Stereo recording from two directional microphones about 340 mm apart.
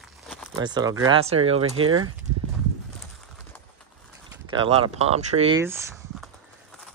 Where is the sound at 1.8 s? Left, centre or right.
Right.